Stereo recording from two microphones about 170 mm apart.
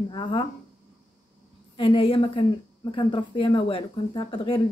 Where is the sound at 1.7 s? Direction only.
30° left (ahead or behind).